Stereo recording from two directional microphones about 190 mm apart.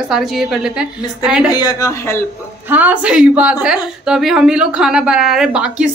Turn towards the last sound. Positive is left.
turn(degrees=-5)  # may be behind; listen again after turning